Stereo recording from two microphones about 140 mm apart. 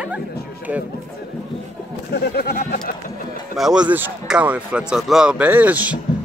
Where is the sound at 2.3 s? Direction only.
90° left.